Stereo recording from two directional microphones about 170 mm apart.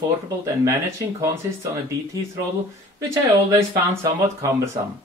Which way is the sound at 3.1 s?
15° right (ahead or behind).